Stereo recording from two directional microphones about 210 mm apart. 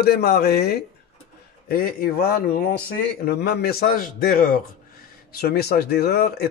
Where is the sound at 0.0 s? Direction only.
50° left (ahead or behind).